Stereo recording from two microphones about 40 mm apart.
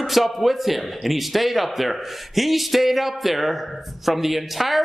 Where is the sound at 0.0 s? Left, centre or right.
Centre.